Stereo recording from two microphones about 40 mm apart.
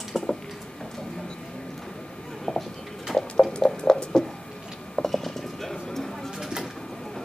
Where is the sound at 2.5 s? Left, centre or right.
Centre.